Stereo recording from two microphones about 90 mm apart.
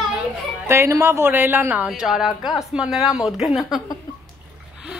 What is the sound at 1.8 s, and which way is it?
Speech, 5° right (ahead or behind).